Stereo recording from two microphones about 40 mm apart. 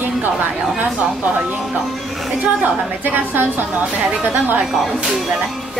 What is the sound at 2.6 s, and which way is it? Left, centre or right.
A woman's voice, right.